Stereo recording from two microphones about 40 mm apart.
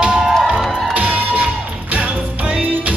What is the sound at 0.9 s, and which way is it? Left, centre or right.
Crowd, right.